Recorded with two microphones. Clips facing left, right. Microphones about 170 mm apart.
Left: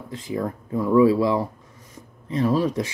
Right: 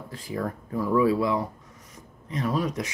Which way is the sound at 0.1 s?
20° left (ahead or behind).